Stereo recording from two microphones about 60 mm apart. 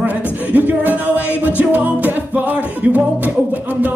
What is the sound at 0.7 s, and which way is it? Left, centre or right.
Music, right.